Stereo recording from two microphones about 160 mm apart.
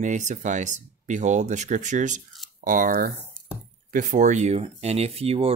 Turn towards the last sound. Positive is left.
turn(degrees=-40)  # may be behind; listen again after turning